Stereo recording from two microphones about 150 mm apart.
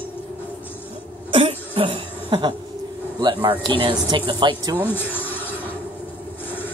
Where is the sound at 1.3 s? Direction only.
35° right (ahead or behind).